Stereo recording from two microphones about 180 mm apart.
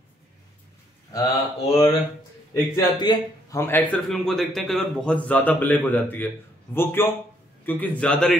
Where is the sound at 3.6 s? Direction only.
10° left (ahead or behind).